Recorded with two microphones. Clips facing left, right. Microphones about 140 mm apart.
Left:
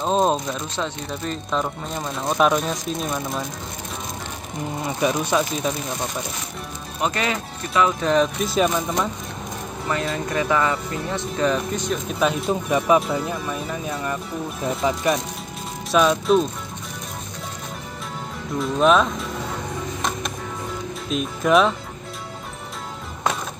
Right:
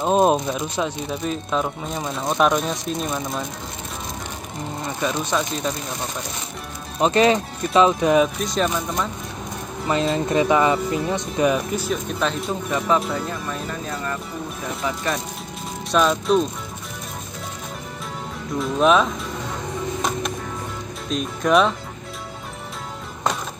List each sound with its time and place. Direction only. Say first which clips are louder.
0.0 s speech: right 3 dB; 10° right (ahead or behind)
4.8 s speech: left 3 dB; 10° left (ahead or behind)
7.0 s speech: right 7 dB; 30° right (ahead or behind)
8.0 s speech: right 2 dB; 10° right (ahead or behind)
8.4 s speech: left 2 dB; 5° left (ahead or behind)
9.8 s speech: right 4 dB; 25° right (ahead or behind); by 14.2 s 10° left (ahead or behind)
15.9 s speech: left 1 dB; centre (ahead or behind)
18.6 s speech: even; centre (ahead or behind)
21.1 s speech: even; centre (ahead or behind)